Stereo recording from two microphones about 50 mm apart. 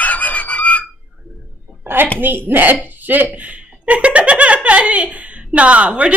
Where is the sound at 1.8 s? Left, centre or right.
Right.